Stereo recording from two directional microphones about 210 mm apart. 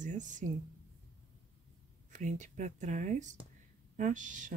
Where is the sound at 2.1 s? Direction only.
35° right (ahead or behind).